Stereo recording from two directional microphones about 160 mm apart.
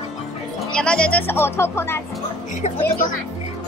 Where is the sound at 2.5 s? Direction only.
50° left (ahead or behind).